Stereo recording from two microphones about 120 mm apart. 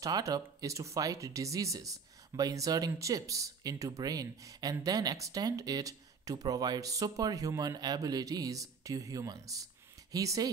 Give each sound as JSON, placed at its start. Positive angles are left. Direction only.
{"t": 0.0, "sound": "speech", "side_deg": -30}